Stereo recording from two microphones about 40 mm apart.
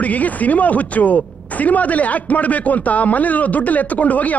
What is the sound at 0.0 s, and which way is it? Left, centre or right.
Speech, left.